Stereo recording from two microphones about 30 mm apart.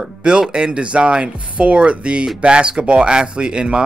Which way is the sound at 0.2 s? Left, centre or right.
Right.